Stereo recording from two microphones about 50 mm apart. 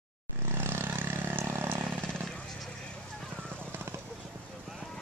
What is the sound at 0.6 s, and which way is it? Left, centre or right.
Vehicle, right.